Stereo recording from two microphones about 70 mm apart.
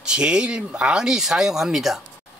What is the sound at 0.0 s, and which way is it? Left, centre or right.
A man's voice, centre.